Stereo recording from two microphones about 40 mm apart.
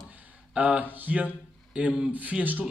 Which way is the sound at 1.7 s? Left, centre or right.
Right.